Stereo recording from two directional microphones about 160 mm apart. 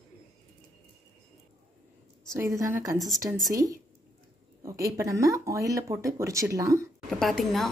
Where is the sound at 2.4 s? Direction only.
15° right (ahead or behind).